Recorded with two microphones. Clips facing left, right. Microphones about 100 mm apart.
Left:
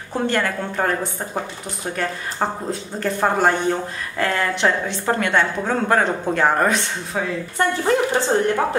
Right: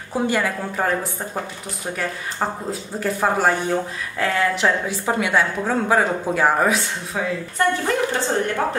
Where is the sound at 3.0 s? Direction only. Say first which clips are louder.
Left 1 dB; 5° right (ahead or behind).